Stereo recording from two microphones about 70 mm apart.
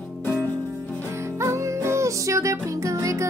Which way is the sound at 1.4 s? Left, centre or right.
Right.